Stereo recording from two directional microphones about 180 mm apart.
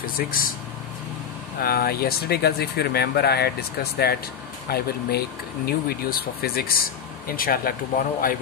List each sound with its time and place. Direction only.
0.0 s speech: 50° left (ahead or behind)
1.6 s speech: 60° left (ahead or behind)
4.6 s speech: 60° left (ahead or behind)